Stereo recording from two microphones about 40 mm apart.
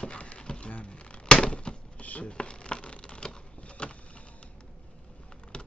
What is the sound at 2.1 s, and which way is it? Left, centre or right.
Shuffling cards, left.